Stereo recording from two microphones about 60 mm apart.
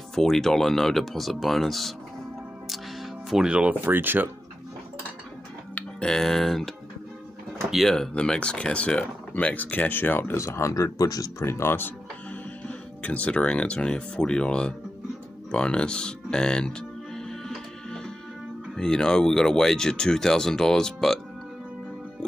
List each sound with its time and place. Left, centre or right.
0.1 s speech: centre
3.4 s speech: centre
3.8 s speech: right
6.0 s speech: centre
7.9 s speech: centre; by 10.3 s left
10.3 s speech: left
11.3 s speech: left
12.6 s speech: left
17.8 s music: centre
18.8 s speech: centre